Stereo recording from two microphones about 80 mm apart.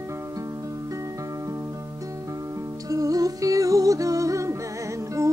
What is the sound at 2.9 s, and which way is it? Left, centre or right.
Music, right.